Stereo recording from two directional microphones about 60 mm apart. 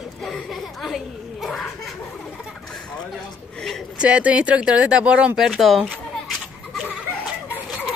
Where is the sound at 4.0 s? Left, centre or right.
Right.